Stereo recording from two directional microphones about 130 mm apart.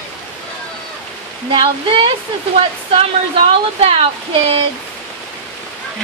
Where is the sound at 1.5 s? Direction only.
45° right (ahead or behind).